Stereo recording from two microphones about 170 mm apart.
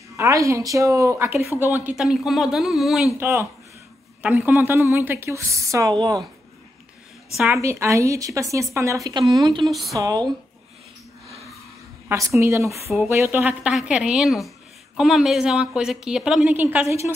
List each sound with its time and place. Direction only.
0.2 s a woman's voice: 20° right (ahead or behind); by 3.1 s centre (ahead or behind)
3.2 s a woman's voice: 15° right (ahead or behind)
7.5 s a woman's voice: 15° right (ahead or behind)
9.7 s a woman's voice: centre (ahead or behind)
9.9 s speech: 20° right (ahead or behind)
12.4 s a woman's voice: 15° right (ahead or behind)